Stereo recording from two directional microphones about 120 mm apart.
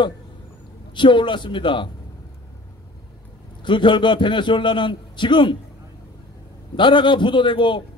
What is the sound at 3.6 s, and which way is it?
A man's voice, 40° left (ahead or behind).